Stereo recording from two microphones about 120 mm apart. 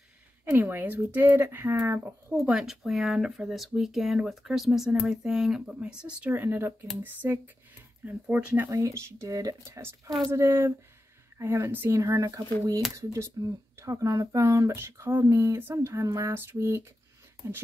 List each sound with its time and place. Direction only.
0.5 s speech: 20° right (ahead or behind)
2.4 s speech: 5° right (ahead or behind)
8.7 s speech: 25° right (ahead or behind)
10.0 s speech: 5° left (ahead or behind)
10.3 s speech: 20° right (ahead or behind)